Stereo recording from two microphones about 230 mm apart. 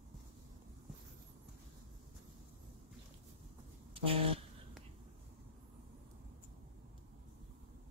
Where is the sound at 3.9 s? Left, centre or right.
Right.